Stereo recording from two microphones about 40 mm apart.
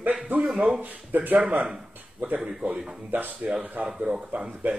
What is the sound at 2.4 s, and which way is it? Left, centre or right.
Speech, centre.